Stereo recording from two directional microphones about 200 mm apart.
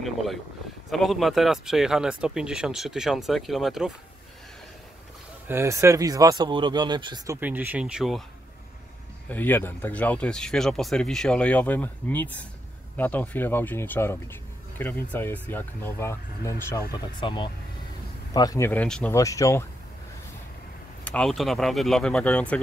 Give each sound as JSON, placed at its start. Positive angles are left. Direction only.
{"t": 0.0, "sound": "speech", "side_deg": 0}
{"t": 5.5, "sound": "speech", "side_deg": -15}
{"t": 7.3, "sound": "speech", "side_deg": -10}
{"t": 9.3, "sound": "speech", "side_deg": 10}
{"t": 21.0, "sound": "speech", "side_deg": 5}